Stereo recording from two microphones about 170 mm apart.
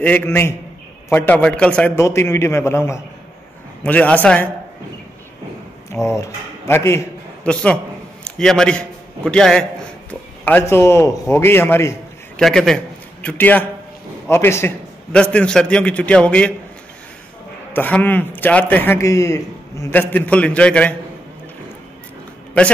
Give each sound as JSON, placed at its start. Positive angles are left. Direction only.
{"t": 0.0, "sound": "a man's voice", "side_deg": 10}
{"t": 6.2, "sound": "speech", "side_deg": 15}
{"t": 7.4, "sound": "a man's voice", "side_deg": 5}
{"t": 12.4, "sound": "a man's voice", "side_deg": 0}
{"t": 17.7, "sound": "a man's voice", "side_deg": 10}